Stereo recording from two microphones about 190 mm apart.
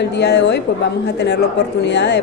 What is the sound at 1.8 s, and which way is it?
Speech, 65° left (ahead or behind).